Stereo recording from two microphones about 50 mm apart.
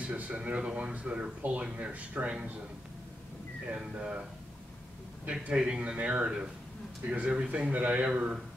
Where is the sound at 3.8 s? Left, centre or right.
Right.